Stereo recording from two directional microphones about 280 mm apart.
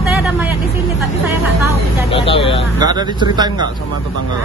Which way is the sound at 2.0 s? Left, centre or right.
Centre.